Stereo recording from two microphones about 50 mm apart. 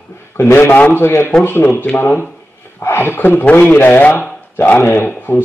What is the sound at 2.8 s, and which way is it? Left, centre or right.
Speech, left.